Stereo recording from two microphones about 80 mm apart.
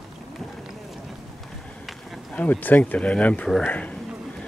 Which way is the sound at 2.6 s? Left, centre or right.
Centre.